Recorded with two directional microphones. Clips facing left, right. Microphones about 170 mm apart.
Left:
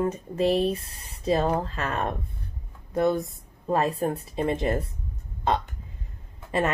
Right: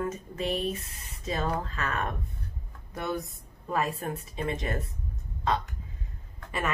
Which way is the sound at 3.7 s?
35° left (ahead or behind).